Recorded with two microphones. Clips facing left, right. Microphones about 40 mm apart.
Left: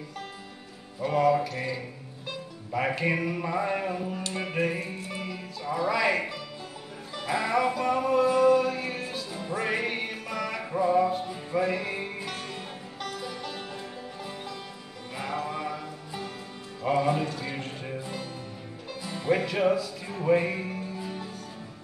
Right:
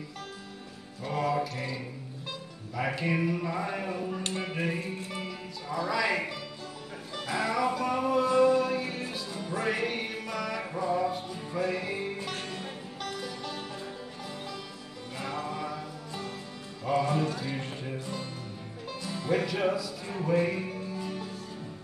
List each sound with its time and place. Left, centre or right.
1.0 s speech: centre
2.9 s speech: centre
5.1 s music: centre
5.8 s speech: centre
7.2 s speech: centre
8.5 s music: centre
10.7 s music: centre
13.0 s music: centre
15.1 s music: centre
17.2 s music: centre
19.0 s speech: centre
20.2 s music: left
20.5 s music: centre